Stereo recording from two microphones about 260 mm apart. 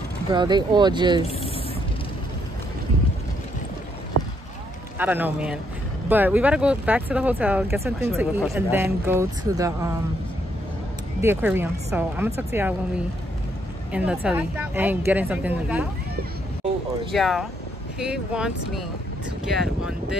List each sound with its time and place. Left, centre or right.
0.3 s a woman's voice: centre
1.2 s speech: left
4.9 s a woman's voice: centre
11.1 s a woman's voice: centre
17.1 s speech: centre